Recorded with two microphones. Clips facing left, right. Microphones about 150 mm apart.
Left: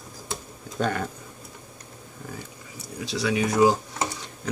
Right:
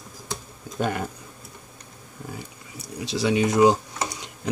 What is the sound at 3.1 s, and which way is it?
Speech, 25° right (ahead or behind).